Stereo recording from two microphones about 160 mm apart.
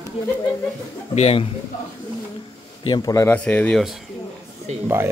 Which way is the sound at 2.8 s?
25° left (ahead or behind).